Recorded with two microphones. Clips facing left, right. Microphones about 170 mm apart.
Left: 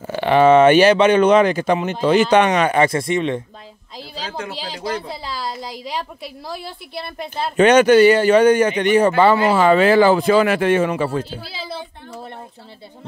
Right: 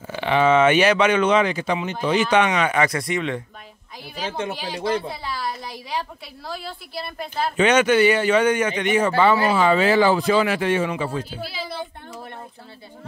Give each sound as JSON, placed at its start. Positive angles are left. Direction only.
{"t": 0.0, "sound": "a man's voice", "side_deg": 45}
{"t": 1.9, "sound": "speech", "side_deg": 60}
{"t": 2.2, "sound": "a man's voice", "side_deg": 40}
{"t": 4.2, "sound": "speech", "side_deg": -25}
{"t": 5.6, "sound": "a woman's voice", "side_deg": 20}
{"t": 7.5, "sound": "a man's voice", "side_deg": 40}